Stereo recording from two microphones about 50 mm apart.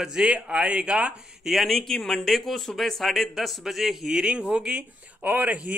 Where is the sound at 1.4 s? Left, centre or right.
Centre.